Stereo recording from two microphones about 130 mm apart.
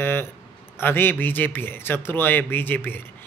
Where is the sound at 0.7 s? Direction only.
15° left (ahead or behind).